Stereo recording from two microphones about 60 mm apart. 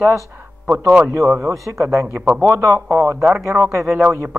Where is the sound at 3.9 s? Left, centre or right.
Right.